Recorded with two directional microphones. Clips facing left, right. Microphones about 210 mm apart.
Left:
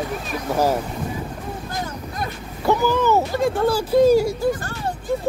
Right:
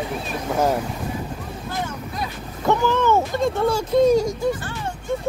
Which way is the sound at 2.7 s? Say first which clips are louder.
Left 1 dB; 10° left (ahead or behind).